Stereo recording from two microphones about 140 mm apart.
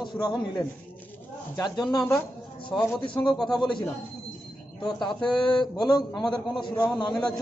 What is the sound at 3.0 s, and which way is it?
Speech, 35° left (ahead or behind).